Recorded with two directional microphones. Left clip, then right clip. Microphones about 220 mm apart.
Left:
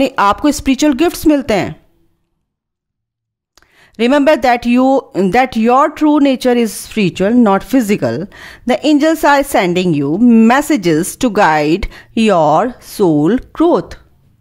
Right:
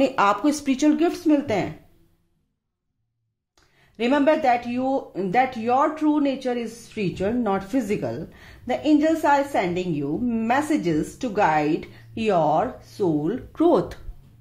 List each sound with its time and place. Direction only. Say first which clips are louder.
0.0 s speech: left 8 dB; 35° left (ahead or behind)
3.5 s speech: left 11 dB; 50° left (ahead or behind)
13.5 s speech: left 7 dB; 30° left (ahead or behind)